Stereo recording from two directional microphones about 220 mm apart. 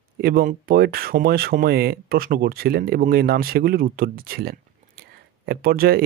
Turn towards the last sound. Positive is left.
turn(degrees=-45)  # may be behind; listen again after turning